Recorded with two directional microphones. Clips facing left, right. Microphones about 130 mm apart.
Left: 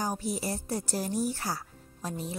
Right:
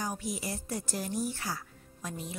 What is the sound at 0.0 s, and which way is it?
A woman's voice, 35° left (ahead or behind).